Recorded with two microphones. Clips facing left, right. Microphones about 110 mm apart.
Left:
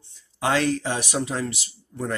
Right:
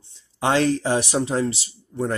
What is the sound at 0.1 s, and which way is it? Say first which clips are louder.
Speech: right 2 dB; 25° right (ahead or behind).